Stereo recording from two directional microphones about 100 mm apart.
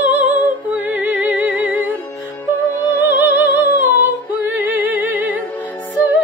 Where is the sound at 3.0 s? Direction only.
20° right (ahead or behind).